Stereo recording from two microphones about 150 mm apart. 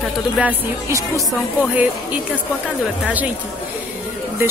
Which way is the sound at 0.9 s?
20° right (ahead or behind).